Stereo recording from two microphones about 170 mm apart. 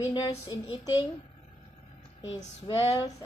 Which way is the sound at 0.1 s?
25° left (ahead or behind).